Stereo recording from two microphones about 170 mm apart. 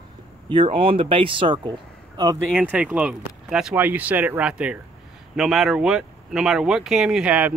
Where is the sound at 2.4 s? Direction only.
5° right (ahead or behind).